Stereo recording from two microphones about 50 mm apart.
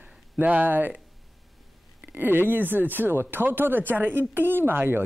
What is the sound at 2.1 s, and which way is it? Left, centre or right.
Speech, right.